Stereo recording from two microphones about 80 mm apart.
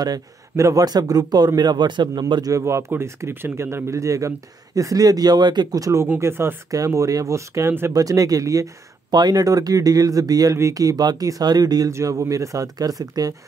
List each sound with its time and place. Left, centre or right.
0.0 s speech: right
2.6 s speech: right
5.8 s speech: right
6.1 s speech: right
7.9 s speech: right
9.1 s speech: right
11.9 s speech: right